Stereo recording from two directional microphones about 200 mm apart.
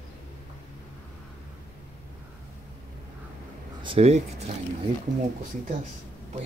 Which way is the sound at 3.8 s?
25° right (ahead or behind).